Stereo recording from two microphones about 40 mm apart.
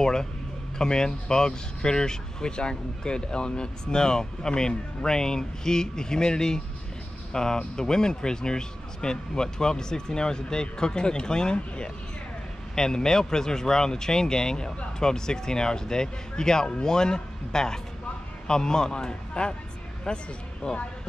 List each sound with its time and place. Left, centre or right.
0.0 s speech: centre